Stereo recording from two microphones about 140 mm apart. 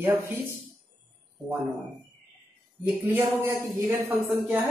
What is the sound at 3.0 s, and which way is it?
Speech, 15° right (ahead or behind).